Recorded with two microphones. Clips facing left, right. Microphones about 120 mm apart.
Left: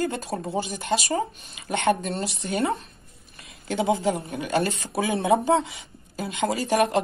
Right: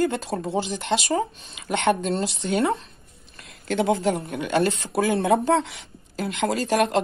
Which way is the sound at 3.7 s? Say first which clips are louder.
Right 1 dB; centre (ahead or behind).